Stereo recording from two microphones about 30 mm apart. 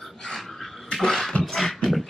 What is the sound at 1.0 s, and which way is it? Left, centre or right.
Beatboxing, centre.